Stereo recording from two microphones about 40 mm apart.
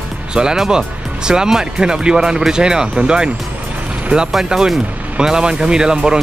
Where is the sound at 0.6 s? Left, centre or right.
Centre.